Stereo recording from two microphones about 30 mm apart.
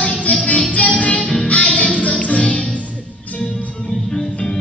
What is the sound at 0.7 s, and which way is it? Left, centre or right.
Music, left.